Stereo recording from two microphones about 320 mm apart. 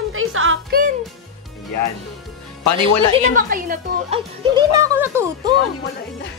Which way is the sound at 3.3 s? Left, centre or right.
Right.